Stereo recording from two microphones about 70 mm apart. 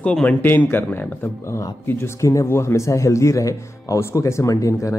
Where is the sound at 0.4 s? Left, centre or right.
Left.